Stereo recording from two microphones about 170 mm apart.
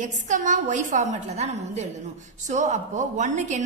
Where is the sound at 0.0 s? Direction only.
45° right (ahead or behind).